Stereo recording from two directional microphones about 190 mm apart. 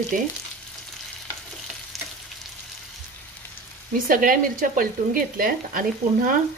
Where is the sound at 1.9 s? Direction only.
Centre (ahead or behind).